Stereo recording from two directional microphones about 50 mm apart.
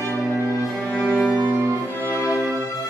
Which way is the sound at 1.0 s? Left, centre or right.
Left.